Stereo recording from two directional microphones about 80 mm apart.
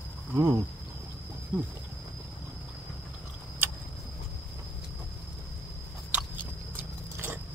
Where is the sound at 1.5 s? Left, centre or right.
Right.